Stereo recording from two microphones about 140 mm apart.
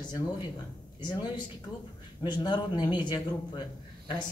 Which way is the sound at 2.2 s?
35° left (ahead or behind).